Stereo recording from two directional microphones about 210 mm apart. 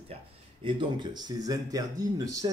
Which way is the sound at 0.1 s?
25° right (ahead or behind).